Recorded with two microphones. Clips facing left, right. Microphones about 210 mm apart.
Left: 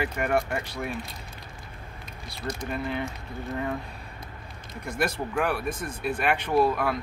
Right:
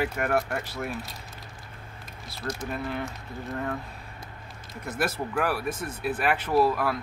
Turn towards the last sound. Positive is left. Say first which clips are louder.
# even
turn(degrees=0)  # may be behind; listen again after turning